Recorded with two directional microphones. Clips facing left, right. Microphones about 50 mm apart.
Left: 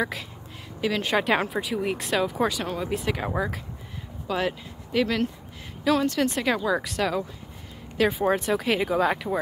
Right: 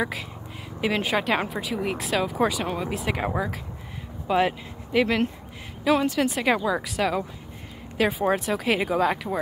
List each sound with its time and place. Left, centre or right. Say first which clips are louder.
0.0 s speech: even; centre
0.7 s speech: right 1 dB; centre
1.0 s speech: left 1 dB; centre
4.3 s speech: right 5 dB; centre
6.1 s speech: right 1 dB; centre